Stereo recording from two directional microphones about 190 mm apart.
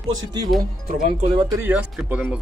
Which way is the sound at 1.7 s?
5° right (ahead or behind).